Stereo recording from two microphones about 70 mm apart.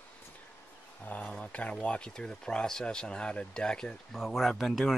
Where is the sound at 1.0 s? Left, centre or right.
Left.